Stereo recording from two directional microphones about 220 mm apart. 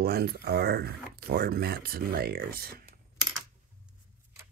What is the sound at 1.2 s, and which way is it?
Speech, 45° right (ahead or behind).